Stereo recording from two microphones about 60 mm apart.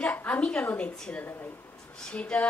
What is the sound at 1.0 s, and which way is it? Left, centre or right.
A woman's voice, centre.